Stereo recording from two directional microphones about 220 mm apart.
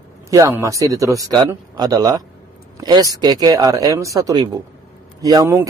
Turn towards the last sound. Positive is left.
turn(degrees=-15)  # may be behind; listen again after turning